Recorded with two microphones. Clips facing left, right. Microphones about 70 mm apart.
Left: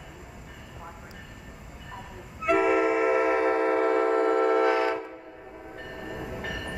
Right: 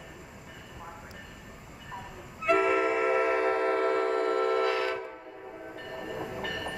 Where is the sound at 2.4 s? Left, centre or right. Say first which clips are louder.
Left 2 dB; centre.